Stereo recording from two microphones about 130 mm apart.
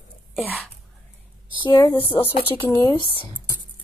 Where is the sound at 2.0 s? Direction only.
45° left (ahead or behind).